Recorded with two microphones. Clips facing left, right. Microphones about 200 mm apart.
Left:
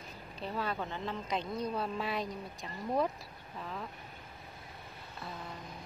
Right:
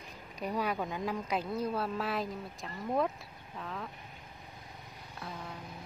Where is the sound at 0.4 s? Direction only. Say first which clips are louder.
Right 3 dB; 15° right (ahead or behind).